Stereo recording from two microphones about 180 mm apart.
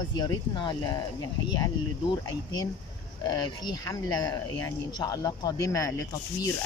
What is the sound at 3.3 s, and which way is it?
Speech, 20° left (ahead or behind).